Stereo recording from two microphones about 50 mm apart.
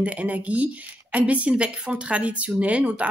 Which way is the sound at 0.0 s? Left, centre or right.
Right.